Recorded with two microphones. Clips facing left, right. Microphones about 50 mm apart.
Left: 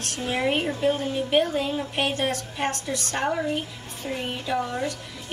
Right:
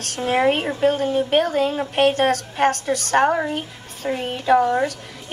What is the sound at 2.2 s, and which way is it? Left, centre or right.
Speech, right.